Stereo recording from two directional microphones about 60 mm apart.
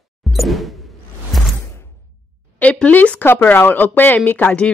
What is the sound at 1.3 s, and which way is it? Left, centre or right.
Whoosh, centre.